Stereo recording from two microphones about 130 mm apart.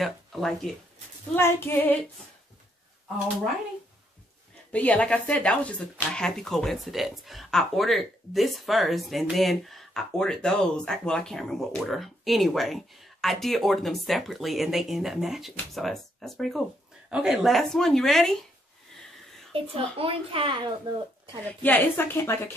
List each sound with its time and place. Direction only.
0.0 s speech: centre (ahead or behind)
1.3 s speech: 20° left (ahead or behind)
4.7 s speech: 10° left (ahead or behind)
19.5 s a child's voice: 45° right (ahead or behind)
21.6 s speech: 15° left (ahead or behind)